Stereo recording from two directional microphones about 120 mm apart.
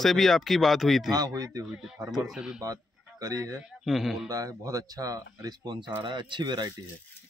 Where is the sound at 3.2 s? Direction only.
30° right (ahead or behind).